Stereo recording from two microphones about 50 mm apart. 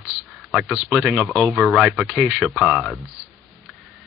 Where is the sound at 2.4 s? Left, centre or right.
Centre.